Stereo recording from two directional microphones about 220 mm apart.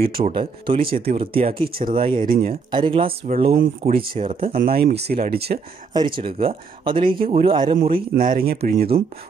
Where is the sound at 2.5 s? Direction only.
25° right (ahead or behind).